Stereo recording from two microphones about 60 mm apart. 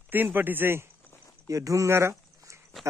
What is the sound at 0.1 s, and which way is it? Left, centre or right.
Speech, right.